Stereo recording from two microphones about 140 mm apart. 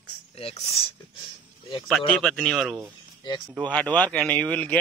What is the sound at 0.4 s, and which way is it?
Speech, 45° left (ahead or behind).